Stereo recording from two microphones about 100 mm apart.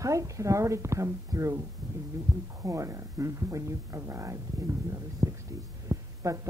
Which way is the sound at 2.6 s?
30° right (ahead or behind).